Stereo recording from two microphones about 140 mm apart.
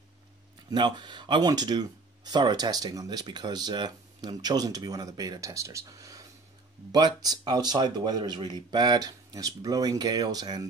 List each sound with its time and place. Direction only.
0.7 s speech: 30° right (ahead or behind)